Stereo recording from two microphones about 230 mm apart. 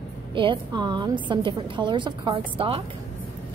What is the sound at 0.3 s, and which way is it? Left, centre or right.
A woman's voice, right.